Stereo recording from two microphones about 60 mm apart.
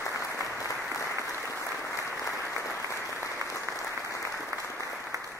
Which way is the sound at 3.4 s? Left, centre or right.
Right.